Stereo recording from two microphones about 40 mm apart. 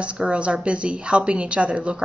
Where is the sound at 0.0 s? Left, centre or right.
Right.